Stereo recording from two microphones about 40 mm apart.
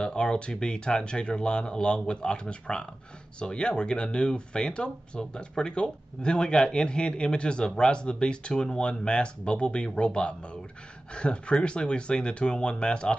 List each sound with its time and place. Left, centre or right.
0.0 s speech: left